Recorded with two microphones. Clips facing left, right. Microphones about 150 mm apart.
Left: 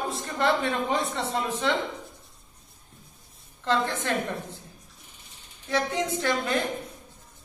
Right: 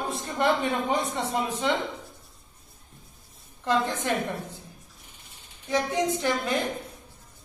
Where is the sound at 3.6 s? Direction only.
15° right (ahead or behind).